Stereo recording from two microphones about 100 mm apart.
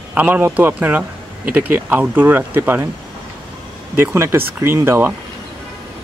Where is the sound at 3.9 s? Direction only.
20° right (ahead or behind).